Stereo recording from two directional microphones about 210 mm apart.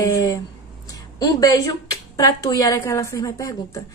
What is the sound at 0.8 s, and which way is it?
A woman's voice, 15° left (ahead or behind).